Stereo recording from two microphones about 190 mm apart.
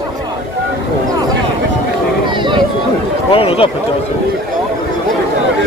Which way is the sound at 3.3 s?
30° left (ahead or behind).